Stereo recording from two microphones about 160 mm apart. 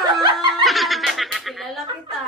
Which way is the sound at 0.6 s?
Centre (ahead or behind).